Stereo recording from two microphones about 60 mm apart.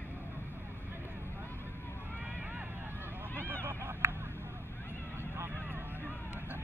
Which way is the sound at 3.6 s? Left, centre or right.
Right.